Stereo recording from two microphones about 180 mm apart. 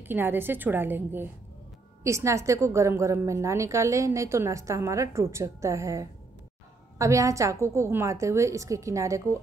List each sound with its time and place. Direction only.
0.0 s a woman's voice: 10° right (ahead or behind)